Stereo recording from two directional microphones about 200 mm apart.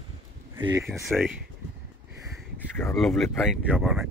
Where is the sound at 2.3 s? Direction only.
5° left (ahead or behind).